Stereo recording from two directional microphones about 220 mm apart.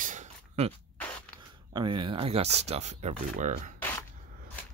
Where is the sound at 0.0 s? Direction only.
35° right (ahead or behind).